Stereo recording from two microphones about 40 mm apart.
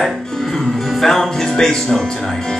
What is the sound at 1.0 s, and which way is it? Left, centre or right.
Music, centre.